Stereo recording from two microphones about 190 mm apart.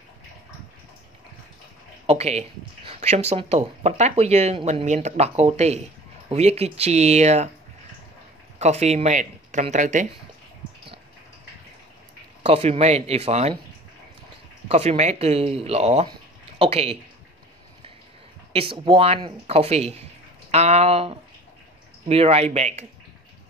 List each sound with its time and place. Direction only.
2.0 s speech: 35° right (ahead or behind)
8.5 s speech: 35° right (ahead or behind)
12.4 s speech: 30° right (ahead or behind)
14.7 s speech: 35° right (ahead or behind)
16.1 s a sound: 30° right (ahead or behind)
18.5 s speech: 30° right (ahead or behind)